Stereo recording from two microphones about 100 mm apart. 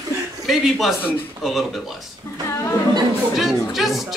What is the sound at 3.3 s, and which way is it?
Speech, centre (ahead or behind).